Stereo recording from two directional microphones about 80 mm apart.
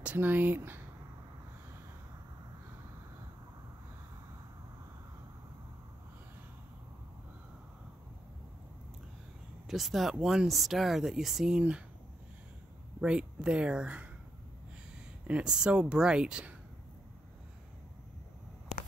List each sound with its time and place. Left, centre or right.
0.0 s speech: right
9.7 s speech: centre
13.0 s speech: centre
15.2 s speech: centre